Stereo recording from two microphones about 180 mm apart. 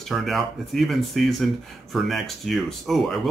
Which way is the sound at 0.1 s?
Centre (ahead or behind).